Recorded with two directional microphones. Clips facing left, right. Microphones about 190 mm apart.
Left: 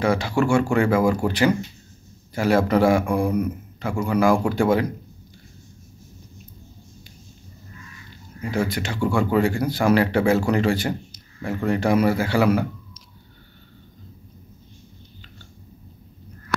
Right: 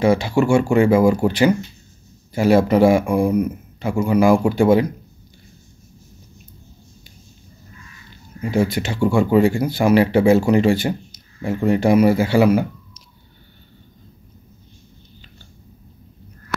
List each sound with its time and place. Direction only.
0.0 s speech: 25° right (ahead or behind)
8.4 s speech: 25° right (ahead or behind)